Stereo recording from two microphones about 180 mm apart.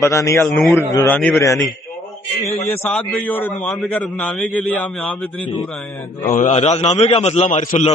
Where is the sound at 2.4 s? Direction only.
10° left (ahead or behind).